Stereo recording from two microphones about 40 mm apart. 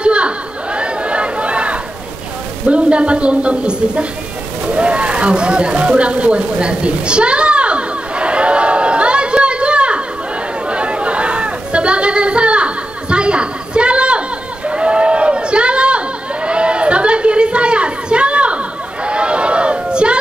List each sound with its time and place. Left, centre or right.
0.0 s chatter: right
2.6 s a man's voice: right
4.7 s a sound: right
10.7 s chatter: right
14.7 s a sound: right
16.4 s chatter: right
19.0 s crowd: right